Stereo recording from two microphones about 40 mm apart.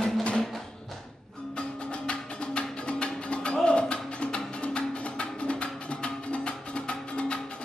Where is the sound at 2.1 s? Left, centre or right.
Left.